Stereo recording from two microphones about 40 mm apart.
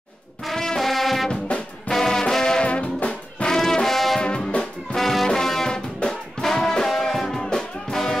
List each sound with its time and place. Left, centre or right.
0.5 s music: centre
2.6 s music: left
3.4 s brass instrument: centre
4.2 s music: left
4.9 s music: centre